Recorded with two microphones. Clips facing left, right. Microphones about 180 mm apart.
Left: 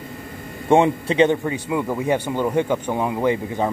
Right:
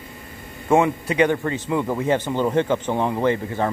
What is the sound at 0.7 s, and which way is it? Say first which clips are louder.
Speech: left 2 dB; 30° left (ahead or behind).